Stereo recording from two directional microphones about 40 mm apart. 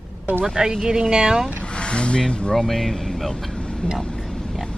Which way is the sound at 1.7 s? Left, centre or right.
Left.